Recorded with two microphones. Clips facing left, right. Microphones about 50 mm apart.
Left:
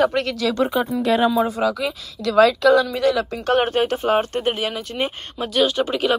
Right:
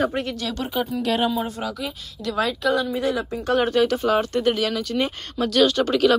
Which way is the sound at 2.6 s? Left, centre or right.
Left.